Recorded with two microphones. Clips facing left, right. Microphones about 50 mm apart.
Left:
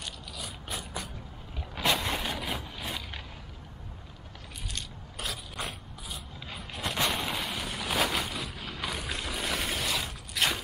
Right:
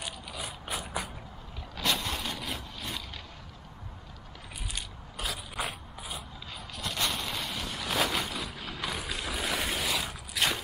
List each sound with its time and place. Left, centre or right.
0.0 s mechanisms: centre
1.8 s vehicle: centre
5.1 s mechanisms: centre
6.5 s vehicle: left; by 10.6 s centre